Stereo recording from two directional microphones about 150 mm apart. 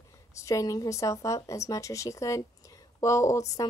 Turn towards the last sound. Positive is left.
turn(degrees=20)  # may be behind; listen again after turning